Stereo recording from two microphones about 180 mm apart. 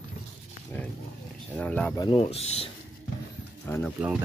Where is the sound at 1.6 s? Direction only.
5° left (ahead or behind).